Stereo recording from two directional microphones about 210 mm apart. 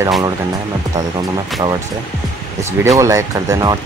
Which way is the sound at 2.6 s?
15° right (ahead or behind).